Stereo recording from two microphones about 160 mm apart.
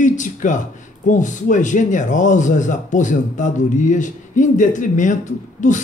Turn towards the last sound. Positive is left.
turn(degrees=50)  # may be behind; listen again after turning